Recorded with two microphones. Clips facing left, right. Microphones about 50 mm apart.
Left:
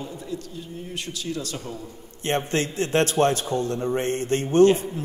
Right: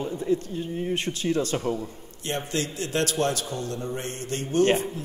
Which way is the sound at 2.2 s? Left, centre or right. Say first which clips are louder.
Left 5 dB; left.